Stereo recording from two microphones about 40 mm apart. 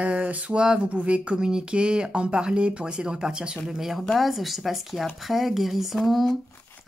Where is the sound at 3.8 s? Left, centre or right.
Centre.